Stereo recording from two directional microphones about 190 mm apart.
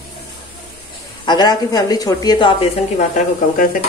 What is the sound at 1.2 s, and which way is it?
Speech, 20° left (ahead or behind).